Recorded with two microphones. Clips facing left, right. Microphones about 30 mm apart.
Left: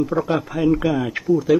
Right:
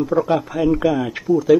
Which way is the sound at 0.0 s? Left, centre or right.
Centre.